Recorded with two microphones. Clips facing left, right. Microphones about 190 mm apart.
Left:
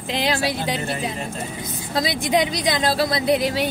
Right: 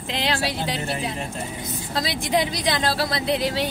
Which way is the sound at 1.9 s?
15° left (ahead or behind).